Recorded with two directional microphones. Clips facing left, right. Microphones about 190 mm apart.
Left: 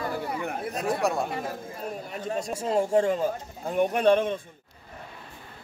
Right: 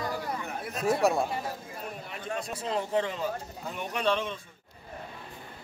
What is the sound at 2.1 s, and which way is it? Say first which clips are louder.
Speech: left 4 dB; 40° left (ahead or behind).